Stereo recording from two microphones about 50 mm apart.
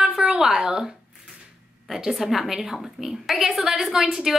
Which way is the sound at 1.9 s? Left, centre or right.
Centre.